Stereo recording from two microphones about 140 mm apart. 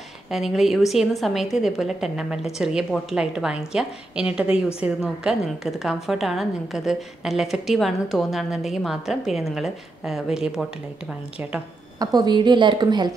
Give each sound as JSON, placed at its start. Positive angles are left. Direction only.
{"t": 0.3, "sound": "a woman's voice", "side_deg": 0}
{"t": 12.0, "sound": "a woman's voice", "side_deg": -30}